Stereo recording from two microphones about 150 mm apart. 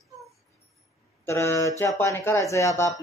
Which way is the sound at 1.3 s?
15° left (ahead or behind).